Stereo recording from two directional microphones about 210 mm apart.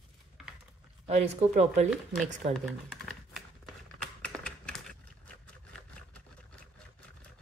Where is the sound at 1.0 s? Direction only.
30° right (ahead or behind).